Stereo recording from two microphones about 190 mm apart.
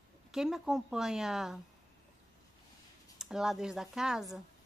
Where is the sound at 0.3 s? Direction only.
Centre (ahead or behind).